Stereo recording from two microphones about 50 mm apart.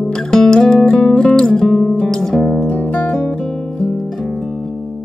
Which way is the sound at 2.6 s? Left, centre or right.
Left.